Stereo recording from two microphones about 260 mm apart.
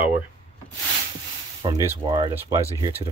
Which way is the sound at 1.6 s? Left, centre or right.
Centre.